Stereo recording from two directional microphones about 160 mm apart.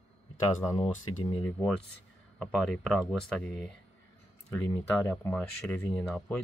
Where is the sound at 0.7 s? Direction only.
35° left (ahead or behind).